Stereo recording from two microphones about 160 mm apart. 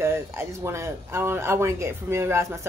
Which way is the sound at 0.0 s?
15° right (ahead or behind).